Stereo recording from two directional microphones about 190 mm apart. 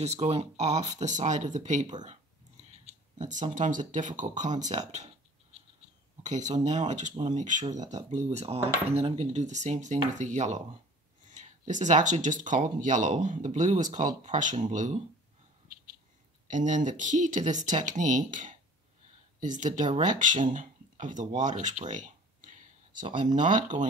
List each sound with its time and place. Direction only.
0.0 s speech: 35° right (ahead or behind)
16.4 s speech: 40° right (ahead or behind)